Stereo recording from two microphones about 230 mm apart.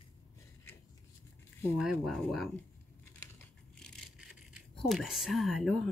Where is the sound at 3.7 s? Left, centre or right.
Centre.